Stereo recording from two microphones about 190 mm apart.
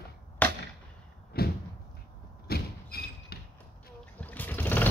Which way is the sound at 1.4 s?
55° left (ahead or behind).